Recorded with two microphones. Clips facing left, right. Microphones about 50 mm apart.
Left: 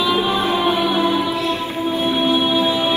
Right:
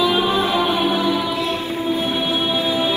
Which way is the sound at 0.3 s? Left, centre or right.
Left.